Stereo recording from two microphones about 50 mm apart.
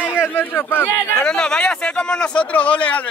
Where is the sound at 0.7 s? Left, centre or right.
Left.